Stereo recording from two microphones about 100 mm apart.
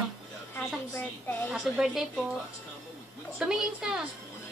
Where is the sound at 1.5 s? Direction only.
5° right (ahead or behind).